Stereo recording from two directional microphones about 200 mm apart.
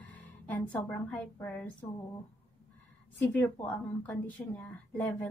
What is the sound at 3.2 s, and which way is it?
A woman's voice, 10° left (ahead or behind).